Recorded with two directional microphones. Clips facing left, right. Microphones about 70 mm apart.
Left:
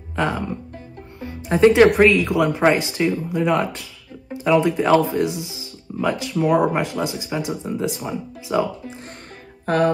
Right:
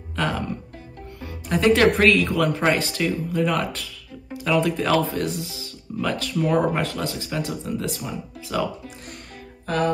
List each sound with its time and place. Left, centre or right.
0.1 s music: left
2.0 s speech: centre
9.7 s a sound: left